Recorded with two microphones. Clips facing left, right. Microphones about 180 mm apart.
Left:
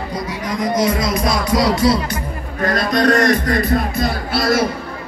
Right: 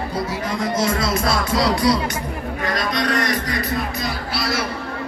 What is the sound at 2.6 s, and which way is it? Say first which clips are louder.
Speech: left 7 dB; 45° left (ahead or behind).